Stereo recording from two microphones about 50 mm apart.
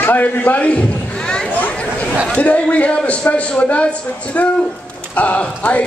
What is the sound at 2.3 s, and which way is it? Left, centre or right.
Speech, left.